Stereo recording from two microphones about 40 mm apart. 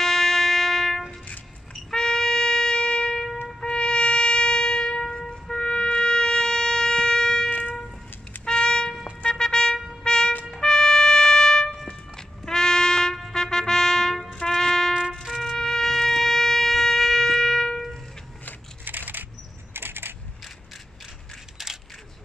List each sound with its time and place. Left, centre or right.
0.0 s music: centre
1.7 s trumpet: centre
3.6 s brass instrument: left
7.4 s a sound: left
8.5 s music: centre
9.2 s a sound: centre
10.0 s trumpet: centre
11.8 s music: centre
13.3 s trumpet: centre
15.4 s shofar: centre
18.9 s a sound: right
19.7 s coin: right
21.6 s coin: centre